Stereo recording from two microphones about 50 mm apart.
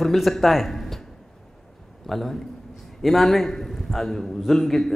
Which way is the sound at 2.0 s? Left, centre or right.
Centre.